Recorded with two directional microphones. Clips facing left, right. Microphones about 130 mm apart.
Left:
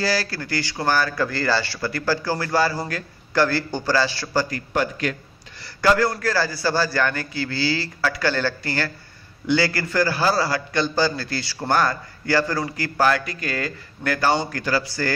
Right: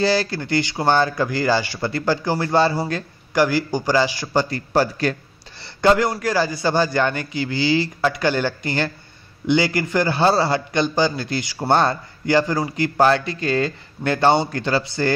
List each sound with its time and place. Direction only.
0.0 s a man's voice: 20° right (ahead or behind)
3.3 s a man's voice: 15° right (ahead or behind); by 5.1 s 35° right (ahead or behind)
5.8 s a man's voice: 20° right (ahead or behind)